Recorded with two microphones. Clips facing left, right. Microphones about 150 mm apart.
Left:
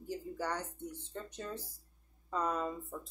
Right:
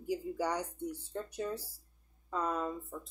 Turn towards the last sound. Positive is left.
turn(degrees=0)  # may be behind; listen again after turning